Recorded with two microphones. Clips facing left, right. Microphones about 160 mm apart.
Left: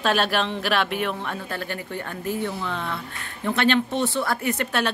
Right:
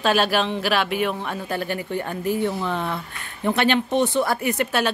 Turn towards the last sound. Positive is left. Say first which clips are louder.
# right 2 dB
turn(degrees=-10)  # may be behind; listen again after turning